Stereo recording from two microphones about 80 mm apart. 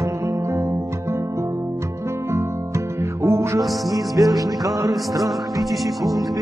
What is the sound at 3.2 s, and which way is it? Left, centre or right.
Music, right.